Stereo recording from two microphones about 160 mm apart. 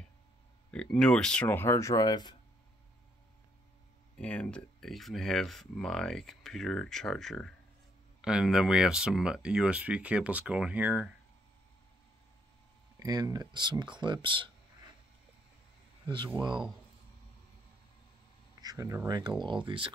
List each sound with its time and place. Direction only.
0.7 s speech: 5° left (ahead or behind); by 2.3 s 25° left (ahead or behind)
4.2 s speech: 10° left (ahead or behind); by 11.1 s 10° right (ahead or behind)
13.0 s speech: 25° right (ahead or behind)
16.3 s speech: 30° right (ahead or behind)
18.6 s speech: 20° right (ahead or behind)